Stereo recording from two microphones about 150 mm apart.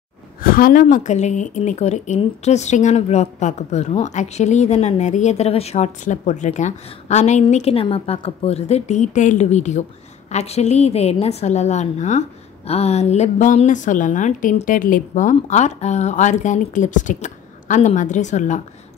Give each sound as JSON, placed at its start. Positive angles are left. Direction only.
{"t": 0.4, "sound": "a woman's voice", "side_deg": 70}